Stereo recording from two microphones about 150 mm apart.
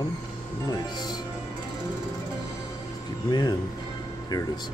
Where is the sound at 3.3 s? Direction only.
25° left (ahead or behind).